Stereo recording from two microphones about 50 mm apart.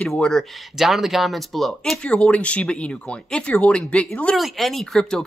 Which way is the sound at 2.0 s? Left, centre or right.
Left.